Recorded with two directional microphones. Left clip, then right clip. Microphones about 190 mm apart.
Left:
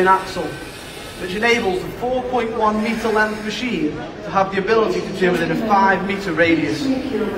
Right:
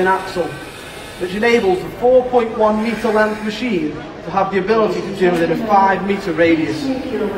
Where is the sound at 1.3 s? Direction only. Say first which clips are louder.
Right 3 dB; 55° right (ahead or behind).